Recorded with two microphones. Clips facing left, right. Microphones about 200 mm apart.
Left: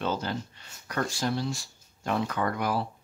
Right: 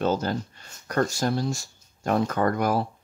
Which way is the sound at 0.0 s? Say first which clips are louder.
Right 6 dB; 45° right (ahead or behind).